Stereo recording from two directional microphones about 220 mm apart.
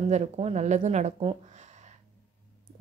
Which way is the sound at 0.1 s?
30° right (ahead or behind).